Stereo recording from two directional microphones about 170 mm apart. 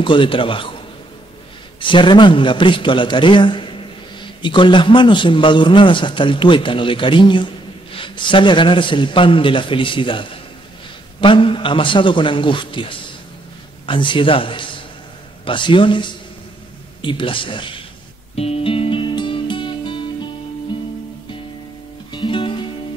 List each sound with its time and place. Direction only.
0.0 s a man's voice: 30° left (ahead or behind)
1.8 s a man's voice: 30° left (ahead or behind)
18.3 s music: 35° left (ahead or behind)
22.1 s music: 30° left (ahead or behind)